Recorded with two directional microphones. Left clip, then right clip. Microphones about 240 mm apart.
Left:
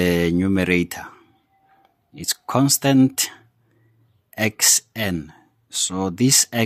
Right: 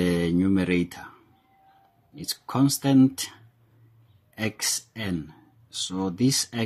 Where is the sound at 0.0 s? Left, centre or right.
Left.